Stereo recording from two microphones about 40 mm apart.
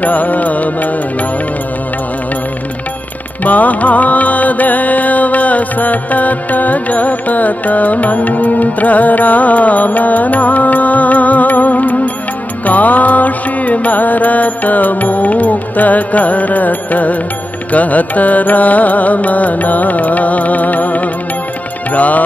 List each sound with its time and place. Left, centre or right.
0.0 s music: left
3.4 s music: left